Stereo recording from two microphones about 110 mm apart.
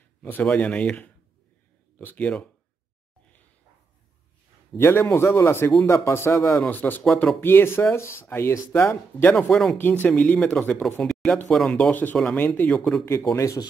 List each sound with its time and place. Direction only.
0.2 s speech: 15° left (ahead or behind)
4.7 s speech: 20° left (ahead or behind)
9.3 s speech: 5° left (ahead or behind)
10.0 s speech: 15° left (ahead or behind)
11.9 s speech: 15° left (ahead or behind)
13.3 s speech: 30° left (ahead or behind)